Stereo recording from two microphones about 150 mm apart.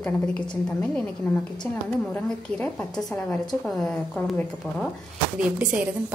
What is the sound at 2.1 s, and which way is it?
A woman's voice, 10° left (ahead or behind).